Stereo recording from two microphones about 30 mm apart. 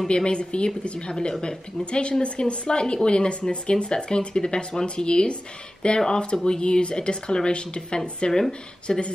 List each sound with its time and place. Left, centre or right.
0.1 s speech: left
8.3 s speech: centre